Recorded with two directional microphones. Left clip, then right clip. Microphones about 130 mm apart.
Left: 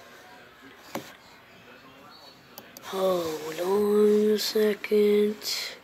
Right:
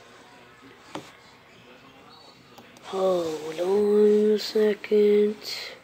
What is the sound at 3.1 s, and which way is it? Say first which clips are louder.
Speech: right 2 dB; 20° left (ahead or behind).